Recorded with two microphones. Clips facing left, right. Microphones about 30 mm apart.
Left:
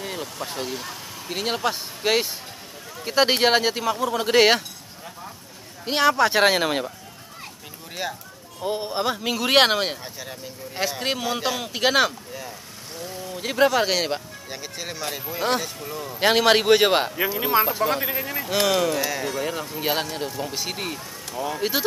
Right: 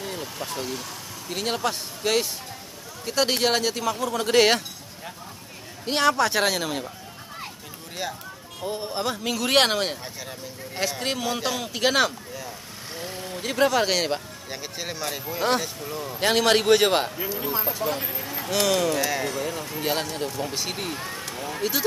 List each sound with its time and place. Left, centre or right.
0.0 s vehicle: centre
0.4 s speech: centre
5.9 s speech: centre; by 6.9 s left
7.9 s speech: centre
12.9 s vehicle: right
13.4 s speech: centre
16.2 s speech: centre
17.4 s speech: left
18.4 s speech: centre
19.0 s speech: centre
19.3 s speech: centre
21.6 s speech: left